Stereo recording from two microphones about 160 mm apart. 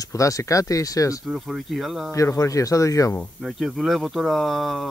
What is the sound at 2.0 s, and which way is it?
Speech, 20° left (ahead or behind).